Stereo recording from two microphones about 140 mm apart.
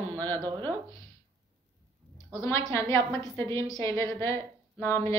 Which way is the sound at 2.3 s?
20° left (ahead or behind).